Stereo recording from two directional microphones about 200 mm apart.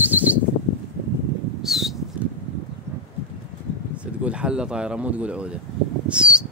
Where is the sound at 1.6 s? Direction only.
Centre (ahead or behind).